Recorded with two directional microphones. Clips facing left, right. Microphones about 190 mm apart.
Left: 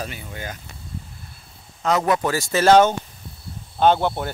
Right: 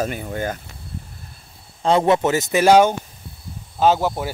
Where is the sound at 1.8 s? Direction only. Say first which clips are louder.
Right 4 dB; 30° right (ahead or behind).